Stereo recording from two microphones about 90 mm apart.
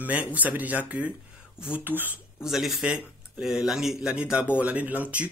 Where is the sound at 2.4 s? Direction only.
5° right (ahead or behind).